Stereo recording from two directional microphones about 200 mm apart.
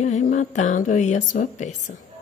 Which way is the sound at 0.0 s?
40° left (ahead or behind).